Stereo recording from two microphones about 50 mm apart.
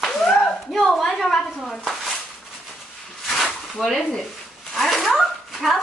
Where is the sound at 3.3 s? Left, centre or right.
Centre.